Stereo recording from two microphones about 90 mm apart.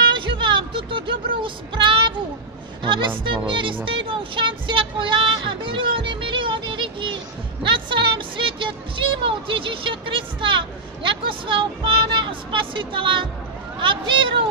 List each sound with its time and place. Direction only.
0.1 s speech: 65° right (ahead or behind)